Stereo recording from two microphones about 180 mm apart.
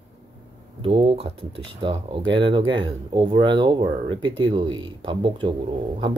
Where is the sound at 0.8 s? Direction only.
30° right (ahead or behind).